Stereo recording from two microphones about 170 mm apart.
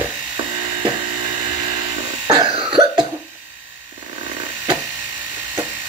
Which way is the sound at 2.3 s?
30° right (ahead or behind).